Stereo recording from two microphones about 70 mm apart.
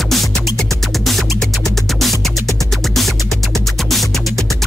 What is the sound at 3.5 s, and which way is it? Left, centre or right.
Music, centre.